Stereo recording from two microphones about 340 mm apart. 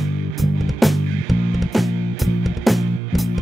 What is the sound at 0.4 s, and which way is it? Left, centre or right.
Music, centre.